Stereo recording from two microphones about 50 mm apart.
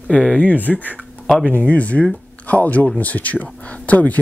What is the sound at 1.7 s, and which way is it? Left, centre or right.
Speech, left.